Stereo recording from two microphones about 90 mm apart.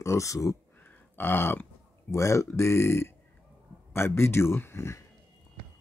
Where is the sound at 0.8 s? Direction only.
25° left (ahead or behind).